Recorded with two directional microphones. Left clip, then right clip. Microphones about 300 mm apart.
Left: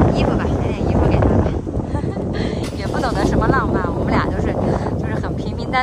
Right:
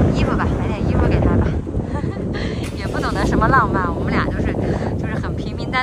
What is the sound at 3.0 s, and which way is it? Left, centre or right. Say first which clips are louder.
Vehicle: even; centre.